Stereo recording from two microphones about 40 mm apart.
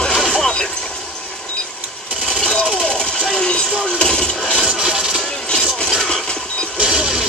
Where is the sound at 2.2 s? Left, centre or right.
Left.